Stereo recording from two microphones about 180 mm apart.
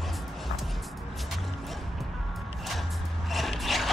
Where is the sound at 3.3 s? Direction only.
Centre (ahead or behind).